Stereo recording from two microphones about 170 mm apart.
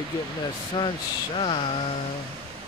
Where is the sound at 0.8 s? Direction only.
30° left (ahead or behind).